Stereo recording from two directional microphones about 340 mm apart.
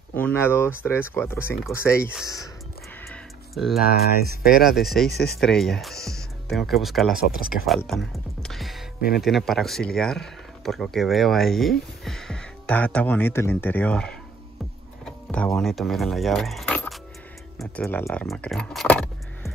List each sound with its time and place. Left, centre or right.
0.1 s speech: centre
3.1 s music: centre
3.8 s speech: left
4.6 s speech: centre
8.4 s music: centre
9.1 s speech: centre